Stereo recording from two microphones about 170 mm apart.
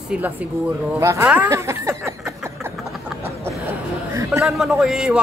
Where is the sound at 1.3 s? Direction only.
10° right (ahead or behind).